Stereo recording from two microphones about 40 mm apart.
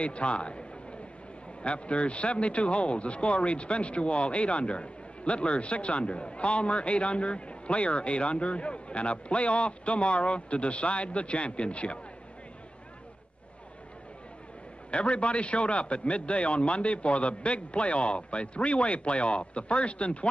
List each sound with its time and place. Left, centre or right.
0.0 s speech: left
1.6 s speech: left
14.9 s a man's voice: left